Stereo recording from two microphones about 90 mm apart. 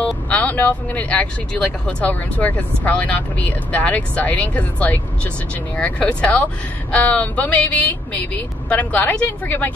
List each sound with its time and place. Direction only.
0.0 s speech: 20° left (ahead or behind)